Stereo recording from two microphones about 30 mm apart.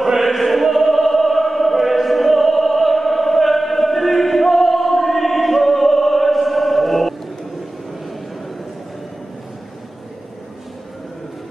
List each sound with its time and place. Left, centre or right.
0.1 s opera: centre